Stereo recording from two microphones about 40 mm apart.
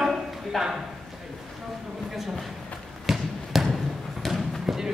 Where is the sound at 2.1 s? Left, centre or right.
Centre.